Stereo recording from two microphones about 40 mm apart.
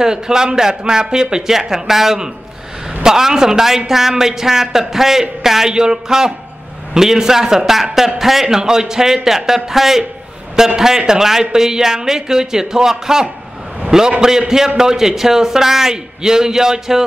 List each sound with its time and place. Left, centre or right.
0.0 s a man's voice: centre